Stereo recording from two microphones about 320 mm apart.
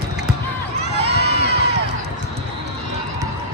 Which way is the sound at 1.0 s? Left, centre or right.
Right.